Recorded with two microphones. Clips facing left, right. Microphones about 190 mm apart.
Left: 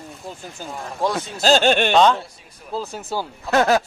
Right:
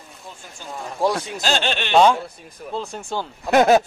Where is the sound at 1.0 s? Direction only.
10° right (ahead or behind).